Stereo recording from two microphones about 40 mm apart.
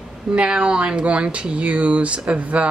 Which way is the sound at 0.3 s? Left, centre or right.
Right.